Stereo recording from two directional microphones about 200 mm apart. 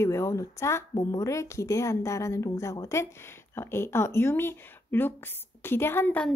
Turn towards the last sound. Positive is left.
turn(degrees=5)  # may be behind; listen again after turning